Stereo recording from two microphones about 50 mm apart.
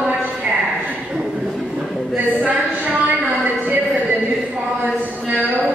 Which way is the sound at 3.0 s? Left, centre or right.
Right.